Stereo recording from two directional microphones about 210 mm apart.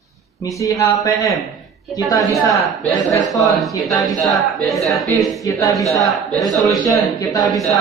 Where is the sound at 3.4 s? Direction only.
Centre (ahead or behind).